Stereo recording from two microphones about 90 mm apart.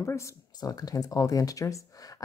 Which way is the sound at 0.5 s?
45° left (ahead or behind).